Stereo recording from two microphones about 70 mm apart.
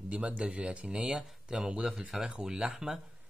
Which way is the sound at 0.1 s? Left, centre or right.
Centre.